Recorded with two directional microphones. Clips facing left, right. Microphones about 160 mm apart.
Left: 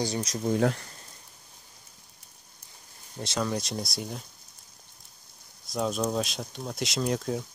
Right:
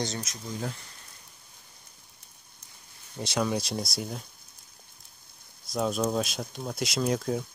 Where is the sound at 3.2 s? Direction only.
5° right (ahead or behind).